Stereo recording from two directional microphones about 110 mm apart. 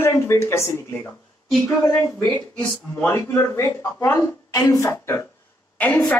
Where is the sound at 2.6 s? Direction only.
20° left (ahead or behind).